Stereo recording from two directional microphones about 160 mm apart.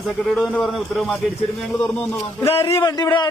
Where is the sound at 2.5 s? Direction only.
35° left (ahead or behind).